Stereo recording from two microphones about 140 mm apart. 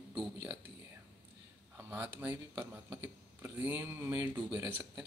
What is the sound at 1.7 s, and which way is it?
Speech, 15° right (ahead or behind).